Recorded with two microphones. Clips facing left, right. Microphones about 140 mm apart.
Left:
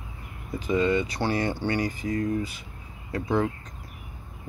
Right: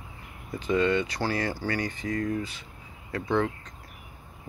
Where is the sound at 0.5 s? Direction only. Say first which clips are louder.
Left 1 dB; 5° left (ahead or behind).